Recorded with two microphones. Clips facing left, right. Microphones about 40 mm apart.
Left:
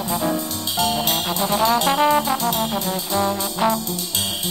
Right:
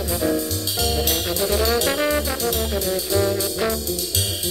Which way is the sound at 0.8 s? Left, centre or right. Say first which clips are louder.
Left 3 dB; centre.